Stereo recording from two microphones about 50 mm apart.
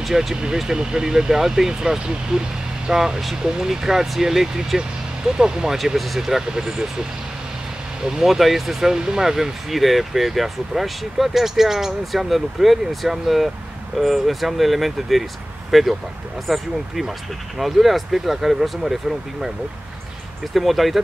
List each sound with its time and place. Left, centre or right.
0.0 s speech: centre
8.2 s speech: centre
20.5 s speech: centre